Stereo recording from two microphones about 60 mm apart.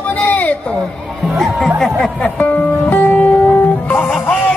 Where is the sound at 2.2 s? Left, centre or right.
Left.